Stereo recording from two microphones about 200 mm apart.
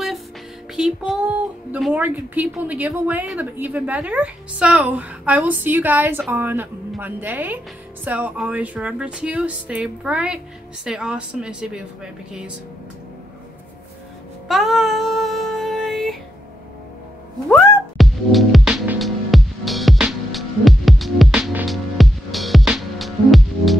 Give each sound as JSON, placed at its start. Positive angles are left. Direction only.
{"t": 0.7, "sound": "speech", "side_deg": -5}
{"t": 14.5, "sound": "music", "side_deg": 0}
{"t": 17.5, "sound": "music", "side_deg": 0}